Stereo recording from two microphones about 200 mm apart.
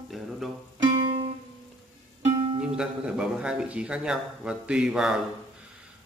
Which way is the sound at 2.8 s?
5° right (ahead or behind).